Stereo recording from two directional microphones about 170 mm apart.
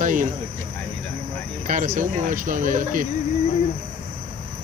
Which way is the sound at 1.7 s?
50° right (ahead or behind).